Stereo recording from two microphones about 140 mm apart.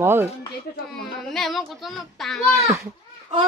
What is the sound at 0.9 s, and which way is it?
Speech, centre (ahead or behind).